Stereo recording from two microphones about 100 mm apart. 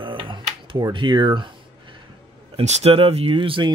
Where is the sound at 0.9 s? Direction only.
55° right (ahead or behind).